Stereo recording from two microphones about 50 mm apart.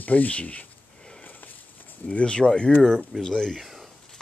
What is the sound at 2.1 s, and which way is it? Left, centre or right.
Speech, left.